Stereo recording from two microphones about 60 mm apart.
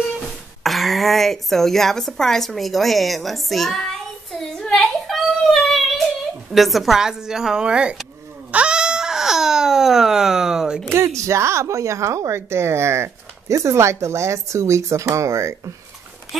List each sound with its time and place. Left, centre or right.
0.7 s a woman's voice: centre
4.6 s child singing: centre
6.5 s a woman's voice: centre
8.5 s baby cry: centre
11.1 s a woman's voice: right